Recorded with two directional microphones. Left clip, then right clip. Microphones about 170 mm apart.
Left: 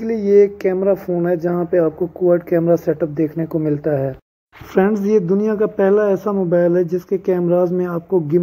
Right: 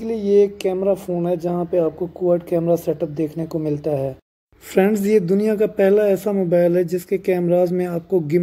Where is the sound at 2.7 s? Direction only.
15° right (ahead or behind).